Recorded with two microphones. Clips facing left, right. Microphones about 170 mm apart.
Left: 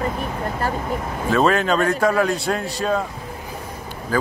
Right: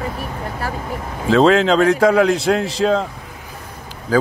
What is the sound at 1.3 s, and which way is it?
Speech, 90° right.